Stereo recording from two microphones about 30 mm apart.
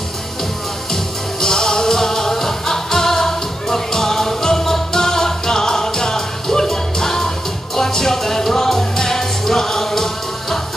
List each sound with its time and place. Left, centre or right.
1.4 s music: left